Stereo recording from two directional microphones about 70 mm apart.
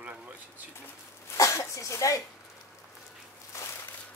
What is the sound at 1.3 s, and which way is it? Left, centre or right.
Speech, left.